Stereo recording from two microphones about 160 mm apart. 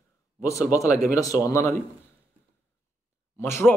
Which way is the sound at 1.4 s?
20° left (ahead or behind).